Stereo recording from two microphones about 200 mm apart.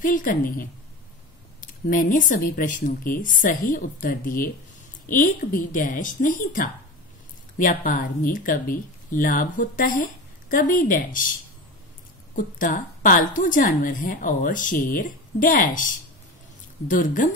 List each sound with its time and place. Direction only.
0.0 s a woman's voice: 40° left (ahead or behind)
12.4 s a woman's voice: 40° left (ahead or behind)